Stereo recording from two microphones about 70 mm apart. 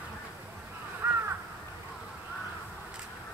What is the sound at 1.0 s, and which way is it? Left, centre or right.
Crow, right.